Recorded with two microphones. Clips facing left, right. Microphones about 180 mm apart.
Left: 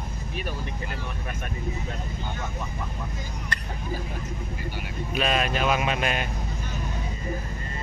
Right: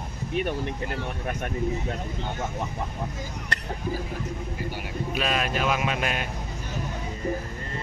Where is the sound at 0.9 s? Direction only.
65° right (ahead or behind).